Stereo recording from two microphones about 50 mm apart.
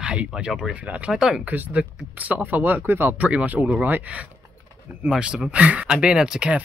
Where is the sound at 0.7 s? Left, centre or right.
Right.